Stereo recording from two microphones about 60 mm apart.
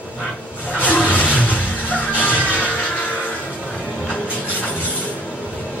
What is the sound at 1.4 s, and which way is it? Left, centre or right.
Music, left.